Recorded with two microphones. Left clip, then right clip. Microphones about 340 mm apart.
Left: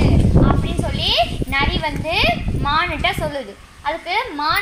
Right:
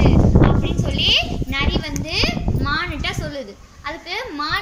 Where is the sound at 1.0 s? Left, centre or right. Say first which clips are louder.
Right 1 dB; centre.